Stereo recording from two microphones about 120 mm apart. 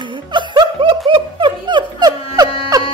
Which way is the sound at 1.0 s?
45° right (ahead or behind).